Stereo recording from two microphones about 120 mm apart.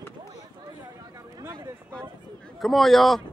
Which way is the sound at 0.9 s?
30° right (ahead or behind).